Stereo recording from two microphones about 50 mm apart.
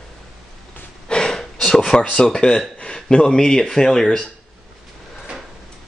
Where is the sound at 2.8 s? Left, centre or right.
Centre.